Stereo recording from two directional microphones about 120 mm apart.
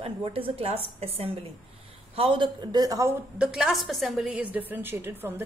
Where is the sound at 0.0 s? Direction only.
50° right (ahead or behind); by 3.2 s 30° right (ahead or behind).